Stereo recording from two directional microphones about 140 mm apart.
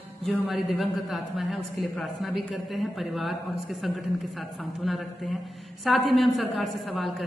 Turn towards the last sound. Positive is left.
turn(degrees=0)  # may be behind; listen again after turning